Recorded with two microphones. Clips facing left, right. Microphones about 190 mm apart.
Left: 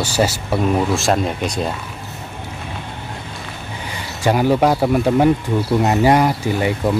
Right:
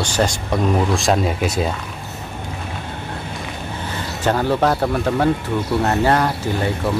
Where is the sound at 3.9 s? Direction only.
10° left (ahead or behind).